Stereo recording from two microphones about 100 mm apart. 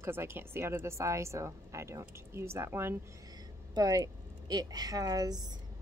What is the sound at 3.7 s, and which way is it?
A woman's voice, 40° right (ahead or behind).